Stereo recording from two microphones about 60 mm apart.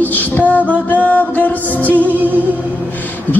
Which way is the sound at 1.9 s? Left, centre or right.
Left.